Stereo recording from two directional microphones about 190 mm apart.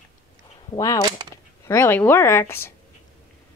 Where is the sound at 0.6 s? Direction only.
20° left (ahead or behind).